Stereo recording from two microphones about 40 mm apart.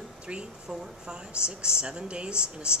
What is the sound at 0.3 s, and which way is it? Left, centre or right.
A woman's voice, right.